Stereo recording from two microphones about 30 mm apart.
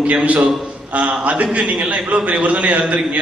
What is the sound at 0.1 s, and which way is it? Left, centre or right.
A man's voice, right.